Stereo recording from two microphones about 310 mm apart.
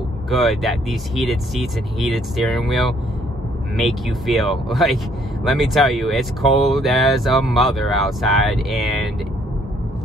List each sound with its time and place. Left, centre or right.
0.3 s speech: centre